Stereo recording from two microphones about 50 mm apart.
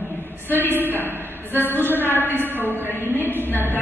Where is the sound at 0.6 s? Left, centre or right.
Right.